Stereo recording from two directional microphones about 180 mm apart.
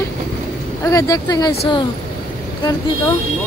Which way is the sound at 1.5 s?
35° left (ahead or behind).